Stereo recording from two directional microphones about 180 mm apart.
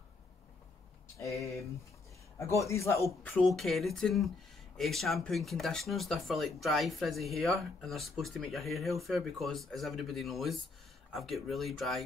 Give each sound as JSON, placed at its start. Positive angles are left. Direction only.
{"t": 2.3, "sound": "a man's voice", "side_deg": 15}
{"t": 3.3, "sound": "speech", "side_deg": 0}